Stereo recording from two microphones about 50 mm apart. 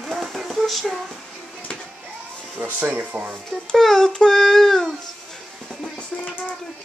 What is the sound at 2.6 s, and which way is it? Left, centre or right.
Speech, right.